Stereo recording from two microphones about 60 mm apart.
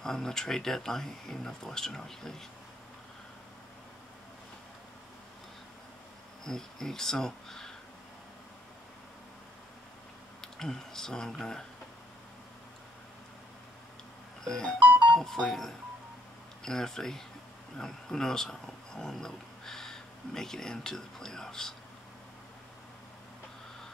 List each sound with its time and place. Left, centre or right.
0.0 s speech: centre
6.4 s speech: centre
10.4 s speech: centre
14.4 s music: centre
14.8 s music: right
15.1 s speech: centre